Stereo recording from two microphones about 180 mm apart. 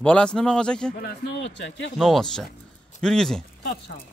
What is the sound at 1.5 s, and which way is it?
Speech, 90° left.